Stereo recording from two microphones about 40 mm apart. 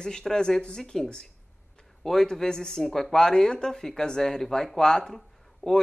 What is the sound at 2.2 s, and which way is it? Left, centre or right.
Speech, centre.